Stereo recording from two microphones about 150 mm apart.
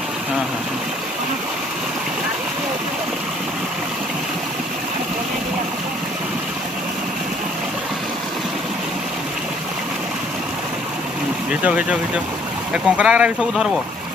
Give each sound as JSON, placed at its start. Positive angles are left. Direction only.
{"t": 11.6, "sound": "speech", "side_deg": -10}